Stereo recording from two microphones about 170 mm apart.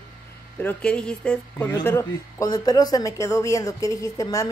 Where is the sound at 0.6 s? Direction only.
10° left (ahead or behind).